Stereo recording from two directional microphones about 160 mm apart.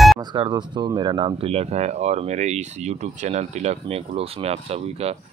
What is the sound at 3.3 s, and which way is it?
Speech, 45° right (ahead or behind).